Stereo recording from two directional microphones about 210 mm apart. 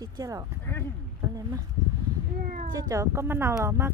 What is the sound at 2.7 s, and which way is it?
Speech, 15° right (ahead or behind).